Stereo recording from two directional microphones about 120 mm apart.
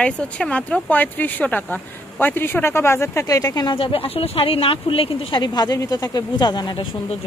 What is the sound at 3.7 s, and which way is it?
Speech, 50° left (ahead or behind).